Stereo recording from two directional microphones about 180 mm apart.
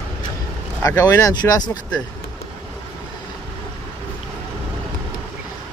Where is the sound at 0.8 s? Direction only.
20° left (ahead or behind).